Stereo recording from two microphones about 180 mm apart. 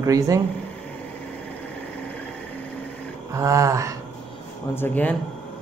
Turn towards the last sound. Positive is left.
turn(degrees=10)  # may be behind; listen again after turning